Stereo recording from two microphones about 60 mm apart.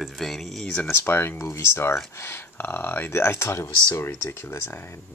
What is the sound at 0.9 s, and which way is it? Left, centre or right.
Speech, left.